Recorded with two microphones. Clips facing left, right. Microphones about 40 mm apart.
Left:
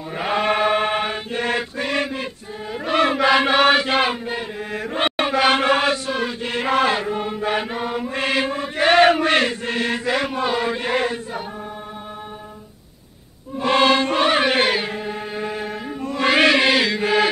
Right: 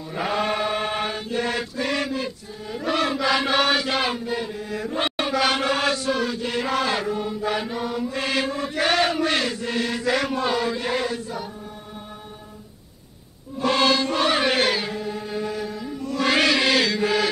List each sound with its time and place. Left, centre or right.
0.1 s chant: left
6.9 s chant: left
7.2 s chant: left
10.0 s chant: left
10.7 s chant: left
13.6 s music: left
16.3 s chant: left